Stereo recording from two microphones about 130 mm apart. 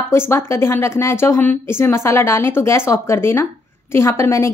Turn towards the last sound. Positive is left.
turn(degrees=20)  # may be behind; listen again after turning